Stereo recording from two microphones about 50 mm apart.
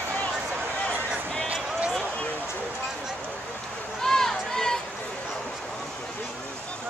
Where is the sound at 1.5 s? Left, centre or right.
Right.